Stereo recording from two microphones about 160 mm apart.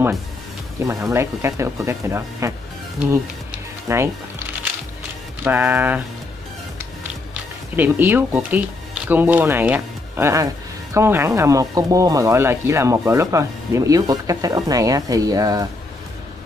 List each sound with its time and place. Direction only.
0.8 s speech: 20° right (ahead or behind)
3.0 s music: 10° right (ahead or behind)
5.4 s speech: 10° right (ahead or behind)
7.7 s speech: 10° right (ahead or behind)